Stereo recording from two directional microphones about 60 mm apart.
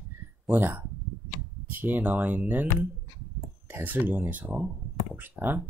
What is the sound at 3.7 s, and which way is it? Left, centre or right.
Speech, right.